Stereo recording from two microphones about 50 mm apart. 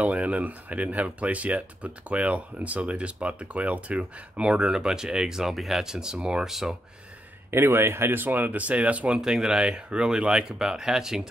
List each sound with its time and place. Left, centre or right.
0.0 s speech: right
6.5 s speech: centre
7.5 s speech: right
9.2 s speech: centre